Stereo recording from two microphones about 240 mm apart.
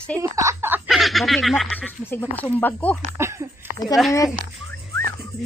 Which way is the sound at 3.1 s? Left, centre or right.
Centre.